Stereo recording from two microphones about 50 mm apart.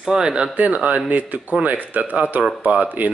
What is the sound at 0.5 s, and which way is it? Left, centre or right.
Speech, right.